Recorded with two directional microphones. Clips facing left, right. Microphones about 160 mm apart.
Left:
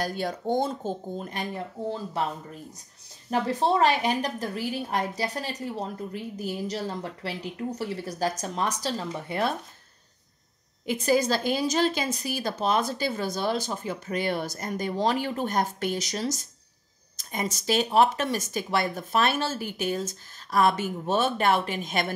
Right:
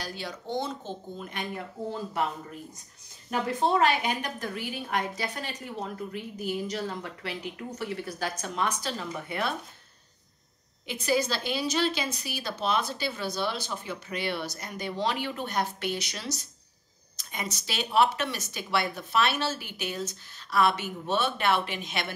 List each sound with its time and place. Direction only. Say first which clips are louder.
0.0 s a woman's voice: left 8 dB; 50° left (ahead or behind)
3.3 s a woman's voice: left 2 dB; 35° left (ahead or behind)
10.9 s a woman's voice: left 4 dB; 45° left (ahead or behind)